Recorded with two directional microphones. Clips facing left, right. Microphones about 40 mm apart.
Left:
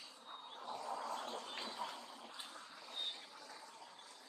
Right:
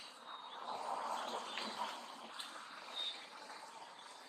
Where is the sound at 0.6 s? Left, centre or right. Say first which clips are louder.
Right 2 dB; right.